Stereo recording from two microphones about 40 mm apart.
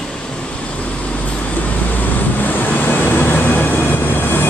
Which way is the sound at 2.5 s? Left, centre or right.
Left.